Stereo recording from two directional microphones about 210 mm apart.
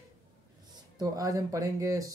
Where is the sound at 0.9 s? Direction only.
15° right (ahead or behind).